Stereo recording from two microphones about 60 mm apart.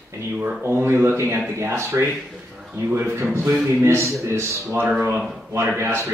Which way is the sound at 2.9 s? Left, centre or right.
Right.